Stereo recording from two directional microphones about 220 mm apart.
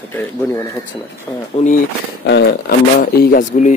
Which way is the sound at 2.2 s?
50° left (ahead or behind).